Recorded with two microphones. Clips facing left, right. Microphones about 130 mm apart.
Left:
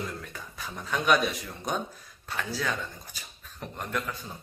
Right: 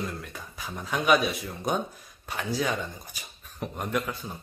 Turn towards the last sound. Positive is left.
turn(degrees=-15)  # may be behind; listen again after turning